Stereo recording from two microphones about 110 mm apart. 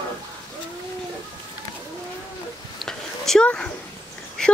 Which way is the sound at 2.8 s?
5° left (ahead or behind).